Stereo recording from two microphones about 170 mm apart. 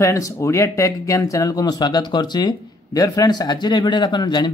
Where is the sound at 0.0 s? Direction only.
15° left (ahead or behind).